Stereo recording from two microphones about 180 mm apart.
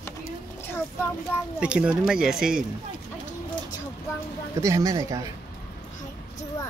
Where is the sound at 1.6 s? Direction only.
5° right (ahead or behind).